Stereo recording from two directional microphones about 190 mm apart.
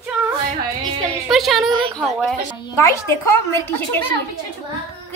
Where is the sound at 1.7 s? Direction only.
25° right (ahead or behind).